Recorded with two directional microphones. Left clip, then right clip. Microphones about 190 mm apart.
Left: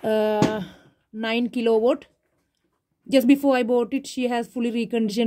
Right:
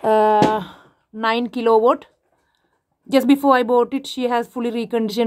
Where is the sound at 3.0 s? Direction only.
60° right (ahead or behind).